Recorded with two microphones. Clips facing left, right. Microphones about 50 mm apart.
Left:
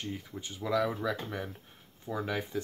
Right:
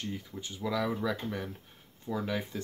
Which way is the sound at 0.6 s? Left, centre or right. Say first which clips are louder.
Left 1 dB; centre.